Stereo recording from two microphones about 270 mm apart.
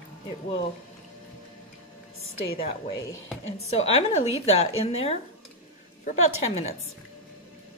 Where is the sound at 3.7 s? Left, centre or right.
Left.